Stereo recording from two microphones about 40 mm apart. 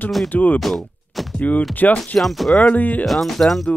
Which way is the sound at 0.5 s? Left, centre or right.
Centre.